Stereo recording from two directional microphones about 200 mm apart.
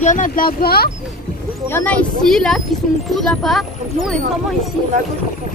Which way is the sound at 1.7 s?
5° left (ahead or behind).